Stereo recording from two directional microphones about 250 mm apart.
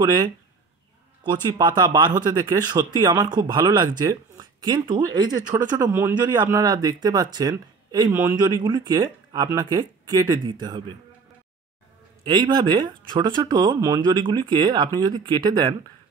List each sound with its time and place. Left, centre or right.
0.0 s speech: centre
12.3 s speech: centre